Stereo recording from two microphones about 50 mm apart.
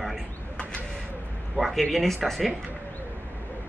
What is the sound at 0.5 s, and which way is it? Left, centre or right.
Bird, left.